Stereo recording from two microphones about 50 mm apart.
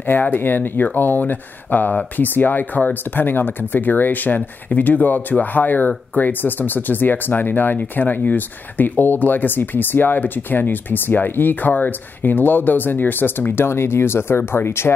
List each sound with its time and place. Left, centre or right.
0.0 s speech: left
13.5 s speech: left